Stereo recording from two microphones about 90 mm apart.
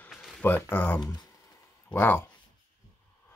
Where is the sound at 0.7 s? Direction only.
20° left (ahead or behind).